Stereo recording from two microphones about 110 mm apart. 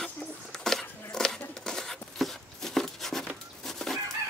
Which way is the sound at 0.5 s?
5° left (ahead or behind).